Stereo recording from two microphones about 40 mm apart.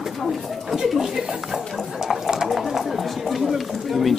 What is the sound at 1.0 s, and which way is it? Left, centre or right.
Speech, centre.